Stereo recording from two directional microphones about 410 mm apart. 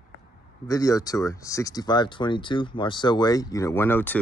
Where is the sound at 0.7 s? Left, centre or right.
Centre.